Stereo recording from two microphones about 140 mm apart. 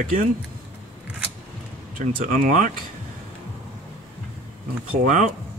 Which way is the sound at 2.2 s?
80° right.